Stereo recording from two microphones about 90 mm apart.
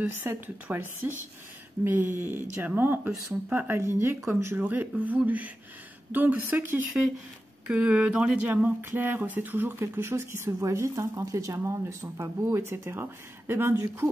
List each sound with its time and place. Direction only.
0.2 s speech: 20° right (ahead or behind)
3.0 s speech: 5° right (ahead or behind)
3.5 s speech: 25° right (ahead or behind)
7.6 s a sound: 10° right (ahead or behind)
8.6 s speech: 25° right (ahead or behind)
10.6 s speech: 35° right (ahead or behind)